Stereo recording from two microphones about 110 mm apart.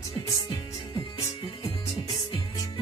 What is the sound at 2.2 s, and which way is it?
Music, 45° left (ahead or behind).